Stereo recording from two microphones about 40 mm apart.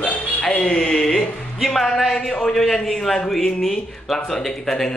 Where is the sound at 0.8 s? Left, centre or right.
Centre.